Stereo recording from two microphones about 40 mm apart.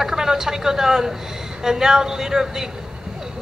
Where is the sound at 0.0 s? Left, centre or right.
Centre.